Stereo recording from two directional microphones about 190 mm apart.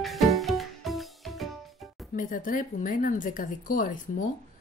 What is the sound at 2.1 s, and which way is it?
Speech, 45° left (ahead or behind).